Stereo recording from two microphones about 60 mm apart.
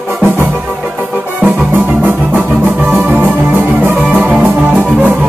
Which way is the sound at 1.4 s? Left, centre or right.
Right.